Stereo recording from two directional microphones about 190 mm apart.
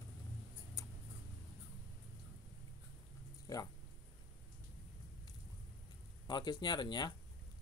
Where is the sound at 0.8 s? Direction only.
15° left (ahead or behind).